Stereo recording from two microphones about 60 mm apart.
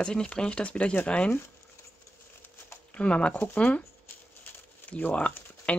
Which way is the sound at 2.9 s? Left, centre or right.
Centre.